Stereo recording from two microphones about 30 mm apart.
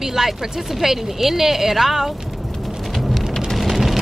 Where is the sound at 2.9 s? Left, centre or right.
Centre.